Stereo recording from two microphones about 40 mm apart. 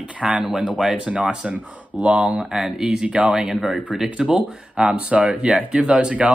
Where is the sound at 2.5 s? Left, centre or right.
Centre.